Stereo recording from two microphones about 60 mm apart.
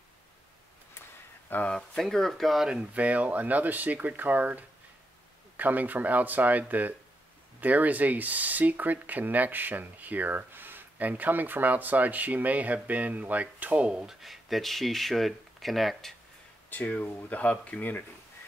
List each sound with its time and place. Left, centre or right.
1.7 s speech: centre
2.7 s speech: right
14.0 s speech: centre
16.7 s speech: left